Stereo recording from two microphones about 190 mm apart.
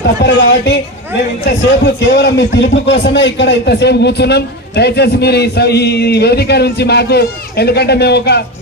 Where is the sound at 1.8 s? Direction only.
65° left (ahead or behind).